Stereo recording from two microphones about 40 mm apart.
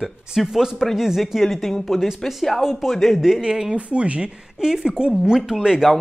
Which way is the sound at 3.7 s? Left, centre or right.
Right.